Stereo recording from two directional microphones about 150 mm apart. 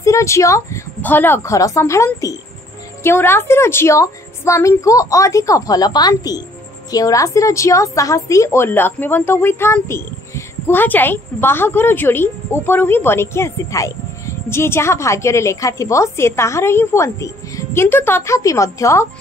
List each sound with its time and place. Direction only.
0.0 s a woman's voice: 20° left (ahead or behind)